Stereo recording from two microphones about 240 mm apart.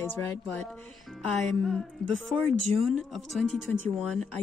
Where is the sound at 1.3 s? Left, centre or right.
Centre.